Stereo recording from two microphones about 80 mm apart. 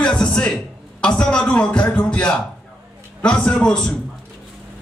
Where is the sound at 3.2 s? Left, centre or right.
Centre.